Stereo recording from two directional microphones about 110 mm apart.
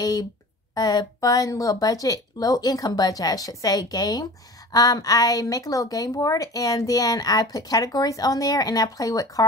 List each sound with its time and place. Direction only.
0.0 s speech: 35° left (ahead or behind)